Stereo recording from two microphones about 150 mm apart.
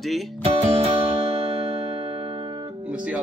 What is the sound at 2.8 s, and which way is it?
Guitar, 10° right (ahead or behind).